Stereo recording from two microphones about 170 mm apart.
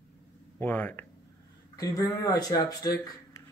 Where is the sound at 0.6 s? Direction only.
10° left (ahead or behind).